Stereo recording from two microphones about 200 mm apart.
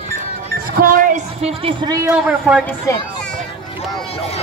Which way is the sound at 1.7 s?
20° right (ahead or behind).